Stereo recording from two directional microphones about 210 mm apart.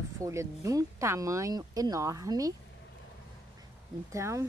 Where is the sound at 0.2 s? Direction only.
15° right (ahead or behind).